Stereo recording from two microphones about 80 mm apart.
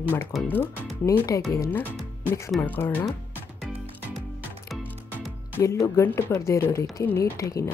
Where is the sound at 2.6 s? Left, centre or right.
Left.